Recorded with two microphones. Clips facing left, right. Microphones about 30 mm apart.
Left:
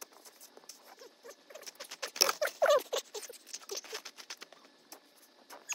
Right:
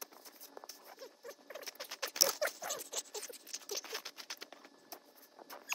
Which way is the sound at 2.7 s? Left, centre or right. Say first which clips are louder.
Left 15 dB; left.